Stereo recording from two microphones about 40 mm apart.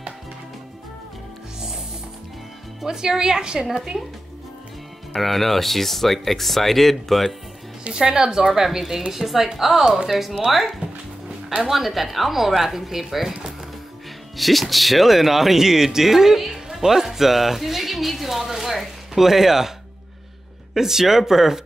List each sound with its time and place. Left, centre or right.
2.8 s a woman's voice: centre
5.1 s speech: centre
8.0 s a woman's voice: centre
20.7 s a woman's voice: centre